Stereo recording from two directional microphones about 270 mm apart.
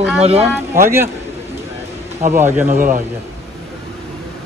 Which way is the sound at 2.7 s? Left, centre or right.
Right.